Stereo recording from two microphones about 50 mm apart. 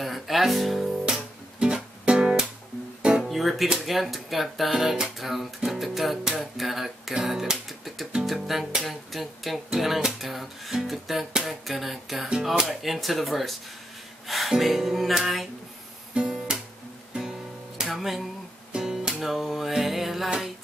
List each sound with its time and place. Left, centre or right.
0.0 s music: centre
1.6 s music: centre
3.2 s music: centre
11.4 s a sound: centre
12.6 s music: centre
17.8 s music: centre
18.7 s music: centre
19.2 s music: centre